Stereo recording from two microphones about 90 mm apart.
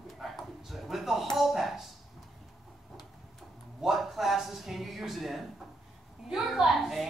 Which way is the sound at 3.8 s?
5° right (ahead or behind).